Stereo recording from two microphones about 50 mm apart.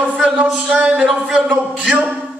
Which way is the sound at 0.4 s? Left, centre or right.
Right.